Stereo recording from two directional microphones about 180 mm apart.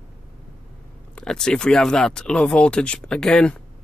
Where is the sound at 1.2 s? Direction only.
5° left (ahead or behind).